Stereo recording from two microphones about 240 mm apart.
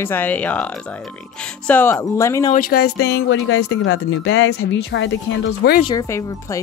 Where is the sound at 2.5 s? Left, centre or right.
Left.